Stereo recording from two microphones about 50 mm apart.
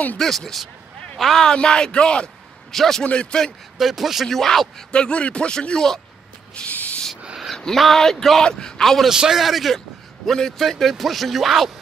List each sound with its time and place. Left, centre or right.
0.2 s speech: centre
1.4 s speech: centre
2.7 s speech: centre
3.0 s a man's voice: centre
3.7 s speech: centre
4.3 s speech: centre
4.9 s a man's voice: left
6.5 s a sound: left
7.5 s a sound: centre
7.8 s speech: centre
8.8 s speech: centre
9.1 s speech: centre
10.2 s speech: centre